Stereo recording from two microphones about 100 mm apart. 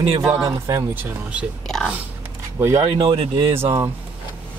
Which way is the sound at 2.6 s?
30° right (ahead or behind).